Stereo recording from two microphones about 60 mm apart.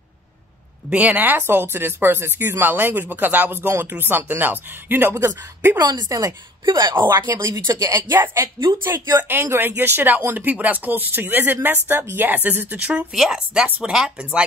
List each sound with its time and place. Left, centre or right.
0.8 s speech: right
1.4 s speech: right
5.8 s a woman's voice: right
7.2 s speech: right
8.2 s speech: right
9.3 s speech: right
12.4 s speech: right
13.1 s speech: centre
13.7 s speech: right
13.9 s speech: centre